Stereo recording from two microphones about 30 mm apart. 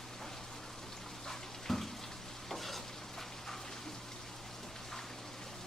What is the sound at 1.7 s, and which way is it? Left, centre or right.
Water, centre.